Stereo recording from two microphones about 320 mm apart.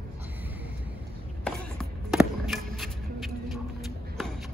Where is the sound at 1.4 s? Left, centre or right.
Centre.